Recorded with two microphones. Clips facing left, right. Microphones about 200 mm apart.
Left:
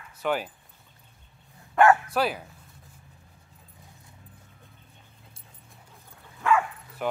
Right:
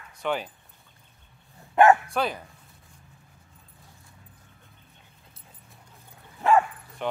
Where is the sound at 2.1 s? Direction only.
5° left (ahead or behind).